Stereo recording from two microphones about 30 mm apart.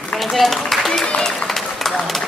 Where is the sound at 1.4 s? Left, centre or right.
Centre.